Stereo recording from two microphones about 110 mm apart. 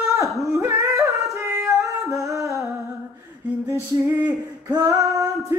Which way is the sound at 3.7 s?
25° right (ahead or behind).